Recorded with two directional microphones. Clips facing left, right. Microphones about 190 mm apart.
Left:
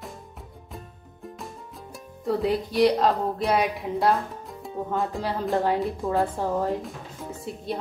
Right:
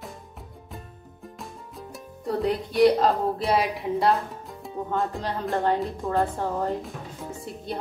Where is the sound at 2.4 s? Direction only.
Centre (ahead or behind).